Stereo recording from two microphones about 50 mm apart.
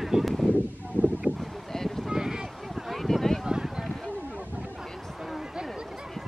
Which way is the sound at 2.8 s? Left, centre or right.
Centre.